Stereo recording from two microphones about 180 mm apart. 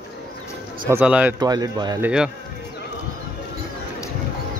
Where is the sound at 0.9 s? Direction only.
10° right (ahead or behind).